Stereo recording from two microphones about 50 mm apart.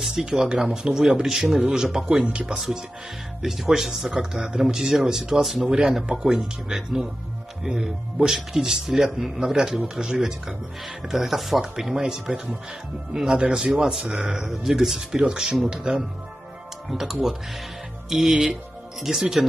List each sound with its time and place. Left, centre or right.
0.0 s speech: centre
11.6 s speech: centre